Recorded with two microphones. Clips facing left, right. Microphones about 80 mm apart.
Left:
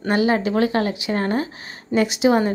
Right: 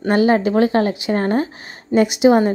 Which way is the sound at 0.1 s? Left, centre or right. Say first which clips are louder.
Right 4 dB; right.